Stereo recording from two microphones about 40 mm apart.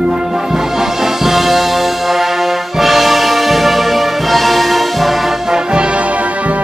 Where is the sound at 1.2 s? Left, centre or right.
Centre.